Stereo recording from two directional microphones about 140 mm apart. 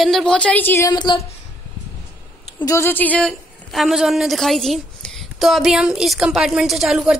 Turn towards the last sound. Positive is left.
turn(degrees=0)  # may be behind; listen again after turning